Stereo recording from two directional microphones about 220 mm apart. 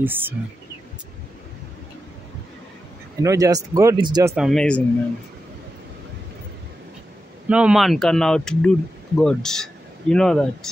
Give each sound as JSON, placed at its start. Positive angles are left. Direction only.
{"t": 0.0, "sound": "speech", "side_deg": -10}
{"t": 3.2, "sound": "speech", "side_deg": -15}
{"t": 4.4, "sound": "speech", "side_deg": 0}
{"t": 7.4, "sound": "speech", "side_deg": -5}